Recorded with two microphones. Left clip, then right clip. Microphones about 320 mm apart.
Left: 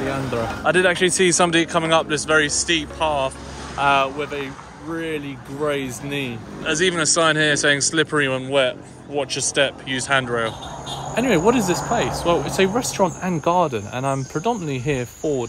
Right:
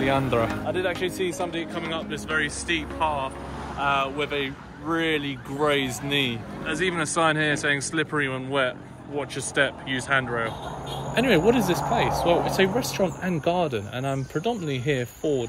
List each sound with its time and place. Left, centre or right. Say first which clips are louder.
0.7 s speech: left 9 dB; left; by 3.3 s centre
3.8 s speech: left 6 dB; left
4.2 s speech: even; centre